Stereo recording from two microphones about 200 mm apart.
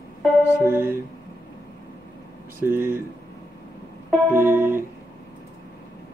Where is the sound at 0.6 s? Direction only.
10° right (ahead or behind).